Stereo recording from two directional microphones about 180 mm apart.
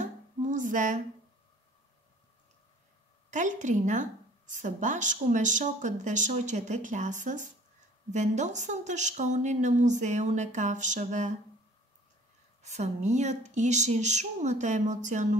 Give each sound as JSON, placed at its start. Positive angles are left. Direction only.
{"t": 0.0, "sound": "a sound", "side_deg": -45}
{"t": 3.3, "sound": "a woman's voice", "side_deg": -40}
{"t": 12.6, "sound": "speech", "side_deg": -40}